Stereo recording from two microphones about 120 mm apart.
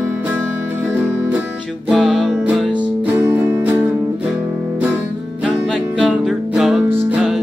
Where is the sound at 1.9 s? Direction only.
Centre (ahead or behind).